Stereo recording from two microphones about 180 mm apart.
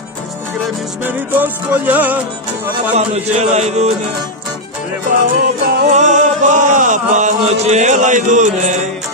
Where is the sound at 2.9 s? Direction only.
35° right (ahead or behind).